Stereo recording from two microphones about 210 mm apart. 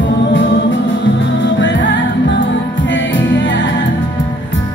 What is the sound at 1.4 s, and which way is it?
Music, 60° left (ahead or behind).